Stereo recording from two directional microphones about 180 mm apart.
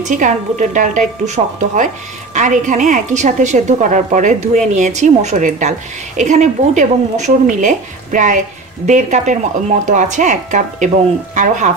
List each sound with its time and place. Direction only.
0.0 s a woman's voice: 45° right (ahead or behind)